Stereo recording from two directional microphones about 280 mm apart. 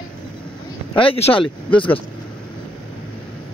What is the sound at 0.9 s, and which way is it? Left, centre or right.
Speech, centre.